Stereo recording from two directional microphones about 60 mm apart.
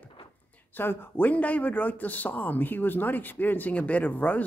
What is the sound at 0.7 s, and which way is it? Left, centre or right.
Speech, left.